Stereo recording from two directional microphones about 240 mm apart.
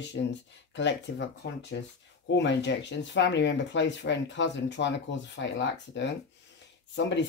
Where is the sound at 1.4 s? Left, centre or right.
Left.